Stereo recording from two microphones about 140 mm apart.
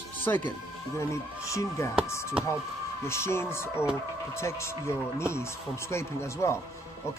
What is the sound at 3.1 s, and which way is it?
Speech, 20° left (ahead or behind).